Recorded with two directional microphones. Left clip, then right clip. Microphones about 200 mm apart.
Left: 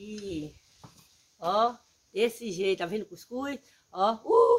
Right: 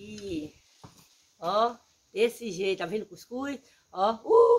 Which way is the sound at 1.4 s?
10° left (ahead or behind).